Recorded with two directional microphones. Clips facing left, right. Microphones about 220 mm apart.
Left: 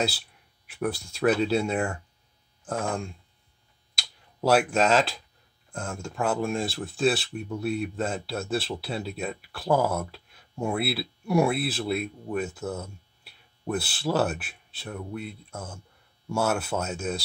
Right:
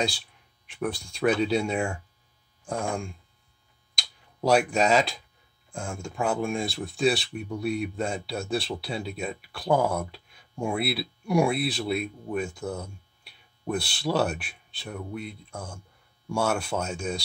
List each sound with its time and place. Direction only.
0.7 s speech: 5° left (ahead or behind)
3.9 s a sound: 5° left (ahead or behind)
5.7 s speech: centre (ahead or behind)